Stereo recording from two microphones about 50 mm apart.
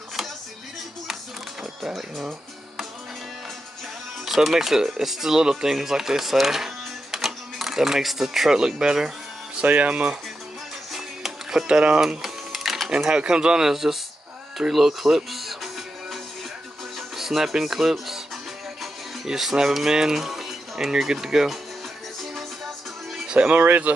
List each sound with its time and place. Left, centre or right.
2.0 s speech: centre
4.2 s speech: centre
9.6 s speech: right
10.9 s music: centre
11.6 s speech: centre
12.2 s printer: centre
12.9 s speech: centre
14.7 s music: centre
17.2 s speech: centre
19.2 s speech: centre
23.2 s speech: right
23.6 s speech: right